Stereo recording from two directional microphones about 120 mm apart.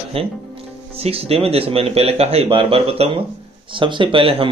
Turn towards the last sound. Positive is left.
turn(degrees=-45)  # may be behind; listen again after turning